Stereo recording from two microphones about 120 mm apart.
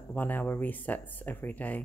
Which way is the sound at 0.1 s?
15° left (ahead or behind).